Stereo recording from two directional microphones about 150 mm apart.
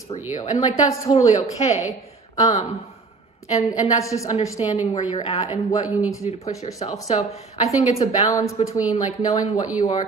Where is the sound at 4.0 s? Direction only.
20° left (ahead or behind).